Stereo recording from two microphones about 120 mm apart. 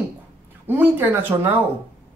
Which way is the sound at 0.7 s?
15° right (ahead or behind).